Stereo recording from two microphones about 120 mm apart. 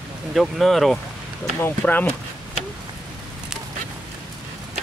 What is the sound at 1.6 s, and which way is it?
Speech, 15° left (ahead or behind).